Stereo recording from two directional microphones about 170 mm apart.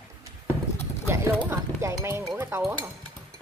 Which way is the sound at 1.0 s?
15° right (ahead or behind).